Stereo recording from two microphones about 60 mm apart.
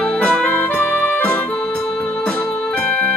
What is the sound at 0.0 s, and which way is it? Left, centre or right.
Music, left.